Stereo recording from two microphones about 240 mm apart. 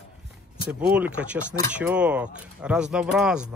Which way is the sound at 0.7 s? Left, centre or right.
Centre.